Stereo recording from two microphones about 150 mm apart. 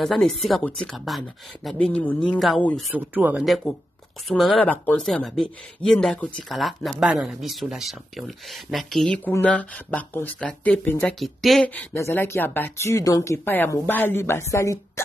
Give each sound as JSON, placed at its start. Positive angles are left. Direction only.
{"t": 0.0, "sound": "speech", "side_deg": 0}
{"t": 2.9, "sound": "speech", "side_deg": -10}
{"t": 11.7, "sound": "speech", "side_deg": 15}